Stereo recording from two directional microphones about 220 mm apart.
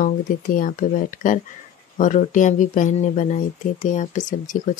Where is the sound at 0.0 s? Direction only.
40° left (ahead or behind).